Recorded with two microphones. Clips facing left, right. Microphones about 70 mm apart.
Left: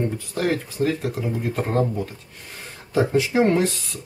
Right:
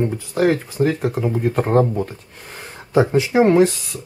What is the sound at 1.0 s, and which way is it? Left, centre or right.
Speech, right.